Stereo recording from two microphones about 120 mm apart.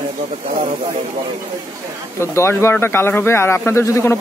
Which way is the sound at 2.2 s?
20° left (ahead or behind).